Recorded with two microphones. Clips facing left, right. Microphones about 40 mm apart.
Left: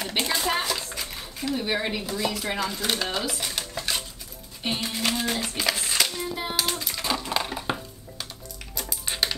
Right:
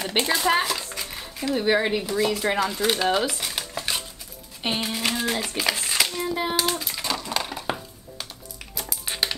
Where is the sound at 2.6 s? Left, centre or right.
Centre.